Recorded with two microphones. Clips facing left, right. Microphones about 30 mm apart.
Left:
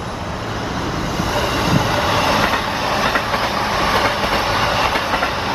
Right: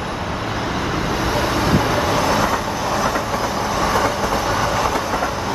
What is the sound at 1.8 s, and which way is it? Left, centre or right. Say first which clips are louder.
Train: left 1 dB; left.